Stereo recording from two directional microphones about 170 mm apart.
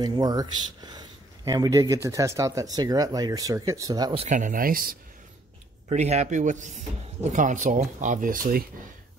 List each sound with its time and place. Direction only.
0.0 s speech: 25° right (ahead or behind)
4.2 s speech: 45° right (ahead or behind)
5.9 s speech: 40° right (ahead or behind)